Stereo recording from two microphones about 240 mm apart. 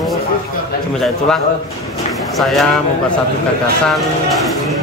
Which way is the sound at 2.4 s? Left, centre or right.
Centre.